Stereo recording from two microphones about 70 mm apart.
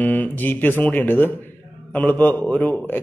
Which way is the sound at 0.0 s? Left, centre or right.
Left.